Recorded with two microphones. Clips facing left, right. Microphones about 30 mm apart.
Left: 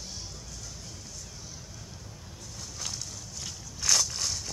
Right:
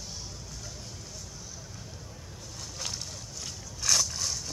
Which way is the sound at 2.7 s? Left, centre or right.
Centre.